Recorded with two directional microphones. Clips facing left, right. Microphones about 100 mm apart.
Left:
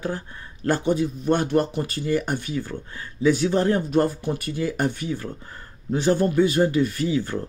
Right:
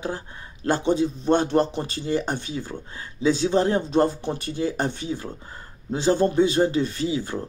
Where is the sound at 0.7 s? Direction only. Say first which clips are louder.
Even; 25° right (ahead or behind).